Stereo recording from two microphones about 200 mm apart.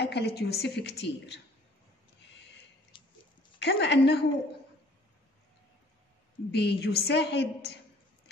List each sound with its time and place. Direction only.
0.0 s a woman's voice: 55° left (ahead or behind)
2.9 s a sound: 25° left (ahead or behind)
3.5 s a woman's voice: 60° left (ahead or behind)
6.5 s a woman's voice: 55° left (ahead or behind)